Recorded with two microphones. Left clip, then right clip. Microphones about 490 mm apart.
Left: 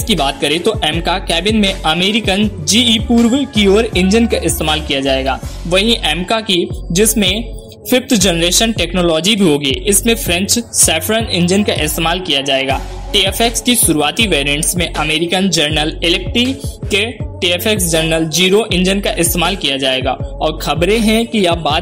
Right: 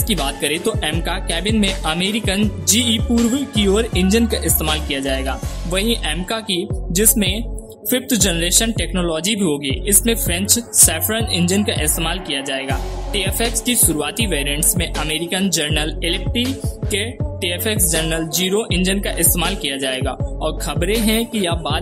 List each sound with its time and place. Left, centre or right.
0.1 s speech: right